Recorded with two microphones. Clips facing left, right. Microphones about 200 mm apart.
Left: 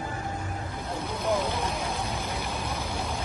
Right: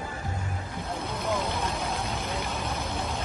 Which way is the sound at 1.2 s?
15° left (ahead or behind).